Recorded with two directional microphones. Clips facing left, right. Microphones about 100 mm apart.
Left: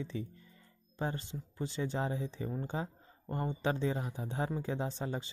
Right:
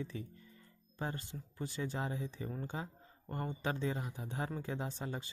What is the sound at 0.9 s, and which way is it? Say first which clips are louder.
Speech: left 4 dB; 25° left (ahead or behind).